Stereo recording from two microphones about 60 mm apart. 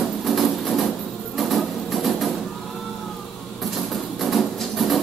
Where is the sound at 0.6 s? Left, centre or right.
Centre.